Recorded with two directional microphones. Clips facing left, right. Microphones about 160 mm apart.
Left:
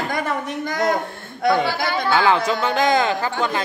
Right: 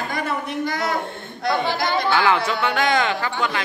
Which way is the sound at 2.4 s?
40° left (ahead or behind).